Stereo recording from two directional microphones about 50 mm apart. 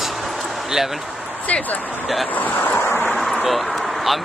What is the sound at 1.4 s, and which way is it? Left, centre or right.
Speech, left.